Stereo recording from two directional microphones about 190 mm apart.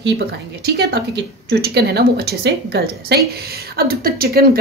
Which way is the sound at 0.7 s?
55° right (ahead or behind).